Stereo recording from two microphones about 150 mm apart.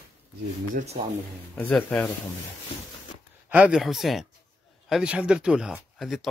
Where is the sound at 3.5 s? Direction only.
5° right (ahead or behind).